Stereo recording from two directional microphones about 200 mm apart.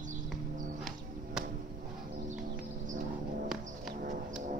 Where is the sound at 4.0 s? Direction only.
40° right (ahead or behind).